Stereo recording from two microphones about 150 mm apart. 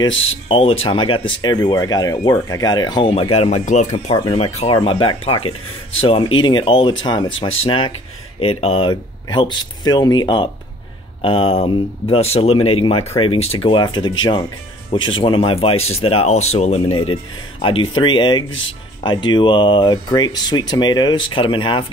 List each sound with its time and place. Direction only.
0.0 s speech: 35° left (ahead or behind); by 4.1 s 50° left (ahead or behind)
4.1 s speech: 40° left (ahead or behind)